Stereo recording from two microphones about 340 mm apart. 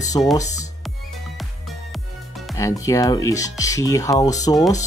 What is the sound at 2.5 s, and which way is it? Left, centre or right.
Speech, centre.